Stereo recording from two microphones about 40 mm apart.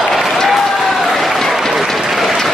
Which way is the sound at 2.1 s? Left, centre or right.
Centre.